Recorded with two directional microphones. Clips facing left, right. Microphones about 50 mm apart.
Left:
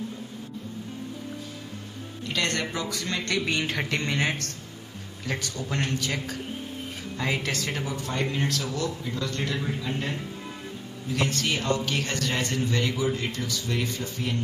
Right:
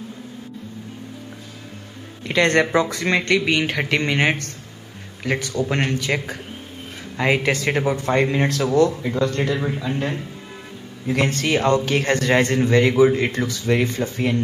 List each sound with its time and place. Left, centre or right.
2.2 s a man's voice: right
7.5 s a man's voice: right
11.1 s a man's voice: right